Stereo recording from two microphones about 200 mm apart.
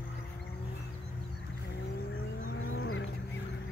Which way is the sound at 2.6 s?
70° left (ahead or behind).